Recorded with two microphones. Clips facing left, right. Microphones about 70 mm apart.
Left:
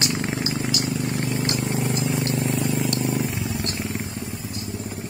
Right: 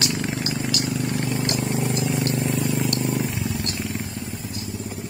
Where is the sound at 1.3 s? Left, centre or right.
Left.